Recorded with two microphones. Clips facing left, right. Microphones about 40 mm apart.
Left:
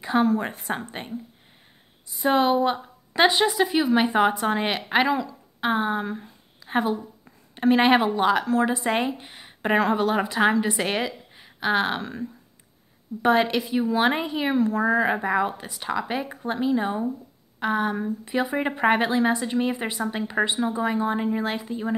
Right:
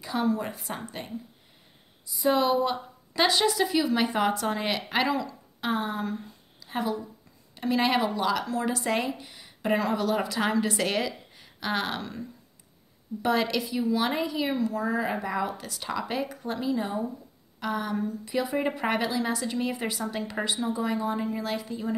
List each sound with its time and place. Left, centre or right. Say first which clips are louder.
0.0 s speech: left 6 dB; left
2.0 s a woman's voice: left 3 dB; left
6.7 s a woman's voice: left 5 dB; left
8.6 s a woman's voice: left 4 dB; left
13.2 s speech: left 5 dB; left